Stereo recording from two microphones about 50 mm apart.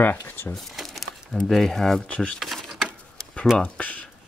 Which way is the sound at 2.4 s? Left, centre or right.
Centre.